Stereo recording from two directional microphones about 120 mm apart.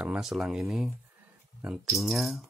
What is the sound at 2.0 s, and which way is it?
Speech, centre (ahead or behind).